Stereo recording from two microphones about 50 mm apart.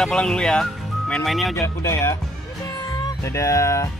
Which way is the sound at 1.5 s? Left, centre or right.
Left.